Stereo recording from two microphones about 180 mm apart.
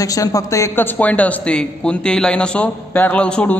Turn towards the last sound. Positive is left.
turn(degrees=5)  # may be behind; listen again after turning